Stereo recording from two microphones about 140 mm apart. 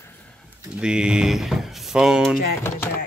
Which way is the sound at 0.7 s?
5° right (ahead or behind).